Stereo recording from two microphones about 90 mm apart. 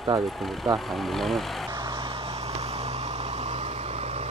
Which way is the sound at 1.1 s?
Centre (ahead or behind).